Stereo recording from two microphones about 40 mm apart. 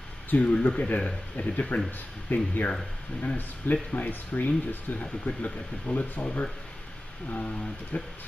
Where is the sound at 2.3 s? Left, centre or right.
Left.